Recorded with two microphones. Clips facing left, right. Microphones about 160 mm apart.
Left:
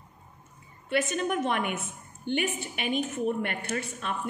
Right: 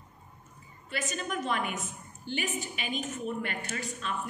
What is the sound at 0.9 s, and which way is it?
A woman's voice, 55° left (ahead or behind).